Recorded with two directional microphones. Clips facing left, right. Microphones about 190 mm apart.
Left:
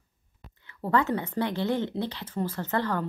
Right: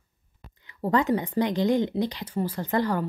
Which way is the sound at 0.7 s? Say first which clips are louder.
Right 3 dB; 15° right (ahead or behind).